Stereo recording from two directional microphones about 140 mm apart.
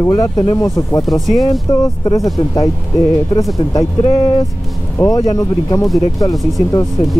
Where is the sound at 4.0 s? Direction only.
40° left (ahead or behind).